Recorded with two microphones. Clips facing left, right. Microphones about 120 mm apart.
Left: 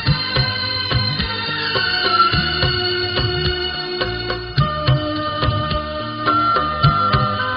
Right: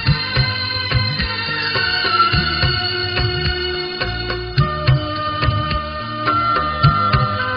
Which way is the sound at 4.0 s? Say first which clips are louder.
Left 1 dB; 5° left (ahead or behind).